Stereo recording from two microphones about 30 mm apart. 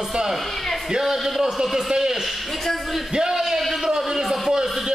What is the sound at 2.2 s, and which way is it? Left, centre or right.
Speech, centre.